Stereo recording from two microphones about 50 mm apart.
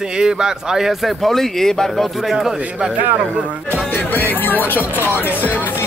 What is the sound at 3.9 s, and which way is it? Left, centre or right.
Music, left.